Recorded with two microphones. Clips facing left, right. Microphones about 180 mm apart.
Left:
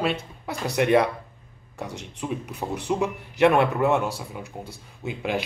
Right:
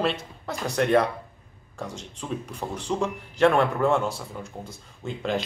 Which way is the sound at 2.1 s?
10° left (ahead or behind).